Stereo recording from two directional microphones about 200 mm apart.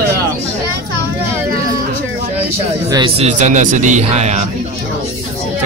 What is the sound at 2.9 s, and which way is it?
A man's voice, 25° right (ahead or behind).